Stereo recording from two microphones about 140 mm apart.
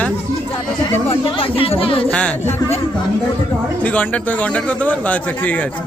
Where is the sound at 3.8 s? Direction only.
10° left (ahead or behind).